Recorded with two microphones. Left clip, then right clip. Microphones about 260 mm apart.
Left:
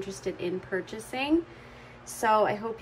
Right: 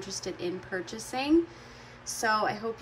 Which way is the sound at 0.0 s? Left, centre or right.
Centre.